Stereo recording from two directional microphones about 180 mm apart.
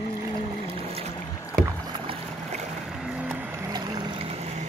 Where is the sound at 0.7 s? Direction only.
35° right (ahead or behind).